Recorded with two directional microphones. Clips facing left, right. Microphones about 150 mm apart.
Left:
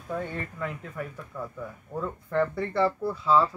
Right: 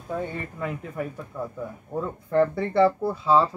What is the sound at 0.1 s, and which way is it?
Speech, 20° right (ahead or behind).